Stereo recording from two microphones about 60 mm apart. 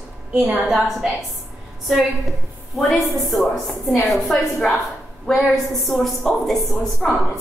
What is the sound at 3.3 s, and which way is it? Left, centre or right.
A woman's voice, centre.